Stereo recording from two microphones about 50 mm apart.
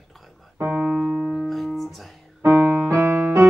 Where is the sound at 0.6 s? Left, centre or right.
Right.